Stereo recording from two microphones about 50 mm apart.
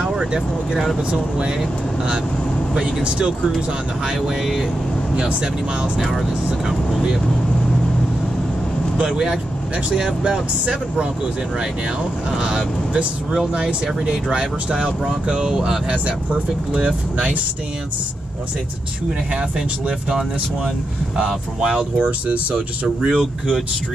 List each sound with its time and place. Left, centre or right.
3.0 s speech: centre
5.1 s speech: centre
5.9 s speech: centre
8.9 s speech: centre
12.4 s speech: centre
15.9 s speech: right
20.1 s speech: centre
23.0 s speech: centre